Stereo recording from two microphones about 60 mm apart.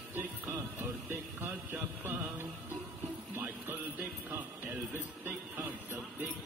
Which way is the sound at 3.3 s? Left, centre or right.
Right.